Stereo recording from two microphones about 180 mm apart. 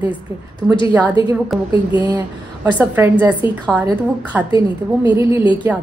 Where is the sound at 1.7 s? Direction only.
25° left (ahead or behind).